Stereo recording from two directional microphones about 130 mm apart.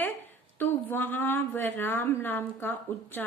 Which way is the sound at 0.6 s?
15° left (ahead or behind).